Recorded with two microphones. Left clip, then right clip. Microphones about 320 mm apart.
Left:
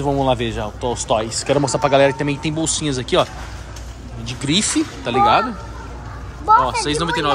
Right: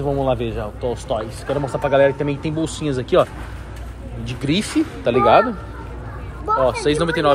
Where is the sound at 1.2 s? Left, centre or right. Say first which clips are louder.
Left 5 dB; left.